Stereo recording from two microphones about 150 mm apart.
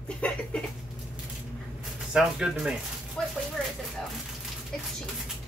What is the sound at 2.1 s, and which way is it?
Speech, 5° right (ahead or behind).